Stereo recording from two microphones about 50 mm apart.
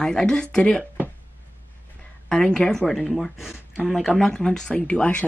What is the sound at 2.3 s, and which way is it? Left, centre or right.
Speech, centre.